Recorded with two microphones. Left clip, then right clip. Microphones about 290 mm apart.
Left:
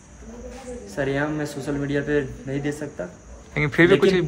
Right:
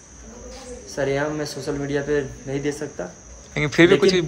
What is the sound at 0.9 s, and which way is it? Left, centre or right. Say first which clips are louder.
A man's voice: right 2 dB; centre.